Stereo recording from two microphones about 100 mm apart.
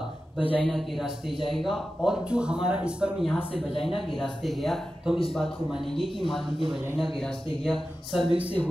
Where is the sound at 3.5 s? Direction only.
70° left (ahead or behind).